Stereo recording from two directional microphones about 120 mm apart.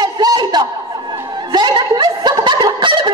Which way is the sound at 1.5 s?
40° right (ahead or behind).